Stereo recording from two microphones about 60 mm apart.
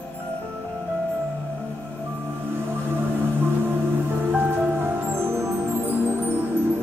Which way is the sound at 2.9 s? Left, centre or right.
Right.